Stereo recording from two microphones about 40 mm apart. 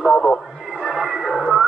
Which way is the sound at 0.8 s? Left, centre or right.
Centre.